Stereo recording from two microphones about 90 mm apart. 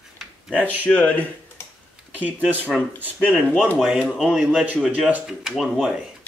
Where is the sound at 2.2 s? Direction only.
15° right (ahead or behind).